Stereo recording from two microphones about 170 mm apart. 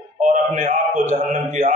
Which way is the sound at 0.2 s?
45° right (ahead or behind).